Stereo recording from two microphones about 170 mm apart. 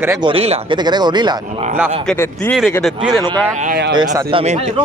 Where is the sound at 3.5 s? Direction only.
45° right (ahead or behind).